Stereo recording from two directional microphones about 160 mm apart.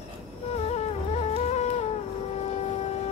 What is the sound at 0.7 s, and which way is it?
Music, 40° left (ahead or behind).